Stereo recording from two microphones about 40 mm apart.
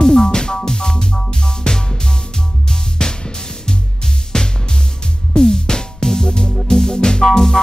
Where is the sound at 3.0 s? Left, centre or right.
Centre.